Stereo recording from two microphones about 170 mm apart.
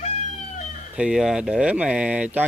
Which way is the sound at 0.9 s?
5° right (ahead or behind).